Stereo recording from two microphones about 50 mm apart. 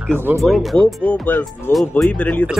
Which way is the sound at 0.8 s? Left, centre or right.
Left.